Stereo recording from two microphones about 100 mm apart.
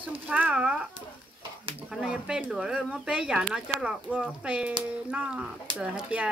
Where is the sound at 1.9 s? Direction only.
5° right (ahead or behind).